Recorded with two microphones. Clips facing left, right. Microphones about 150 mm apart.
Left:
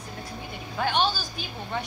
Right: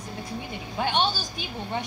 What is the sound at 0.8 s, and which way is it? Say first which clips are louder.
Speech: even; 20° right (ahead or behind).